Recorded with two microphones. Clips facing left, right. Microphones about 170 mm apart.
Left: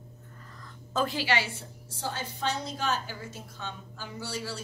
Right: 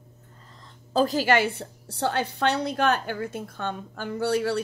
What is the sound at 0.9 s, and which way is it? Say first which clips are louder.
A woman's voice: right 7 dB; 40° right (ahead or behind).